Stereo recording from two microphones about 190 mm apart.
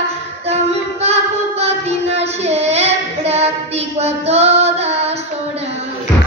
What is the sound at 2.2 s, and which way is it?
Child singing, 35° right (ahead or behind).